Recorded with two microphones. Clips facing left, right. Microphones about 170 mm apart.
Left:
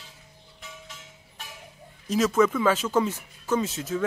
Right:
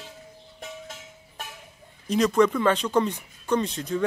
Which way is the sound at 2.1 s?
5° left (ahead or behind).